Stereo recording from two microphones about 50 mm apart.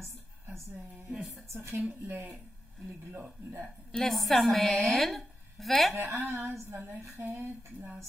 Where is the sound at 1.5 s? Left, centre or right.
Right.